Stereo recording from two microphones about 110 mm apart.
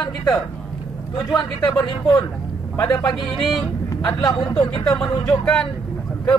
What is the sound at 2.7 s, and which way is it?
Speech, 25° left (ahead or behind).